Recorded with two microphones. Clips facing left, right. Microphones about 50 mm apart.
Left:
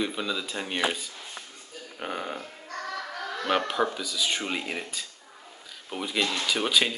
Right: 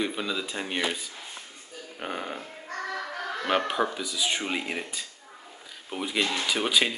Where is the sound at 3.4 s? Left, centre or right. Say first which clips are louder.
Even; centre.